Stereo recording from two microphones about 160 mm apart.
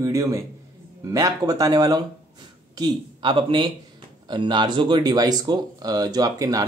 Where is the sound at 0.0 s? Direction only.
20° right (ahead or behind).